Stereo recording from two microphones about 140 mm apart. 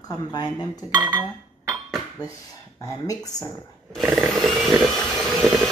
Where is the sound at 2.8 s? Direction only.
25° left (ahead or behind).